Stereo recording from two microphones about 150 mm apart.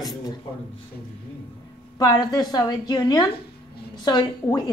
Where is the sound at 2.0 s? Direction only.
25° left (ahead or behind).